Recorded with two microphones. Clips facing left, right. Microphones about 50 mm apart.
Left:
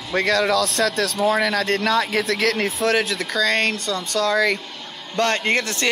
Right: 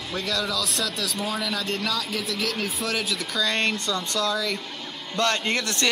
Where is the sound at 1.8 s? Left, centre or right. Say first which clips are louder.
Left 8 dB; left.